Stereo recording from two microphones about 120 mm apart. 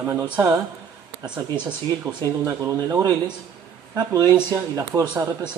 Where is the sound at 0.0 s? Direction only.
20° right (ahead or behind).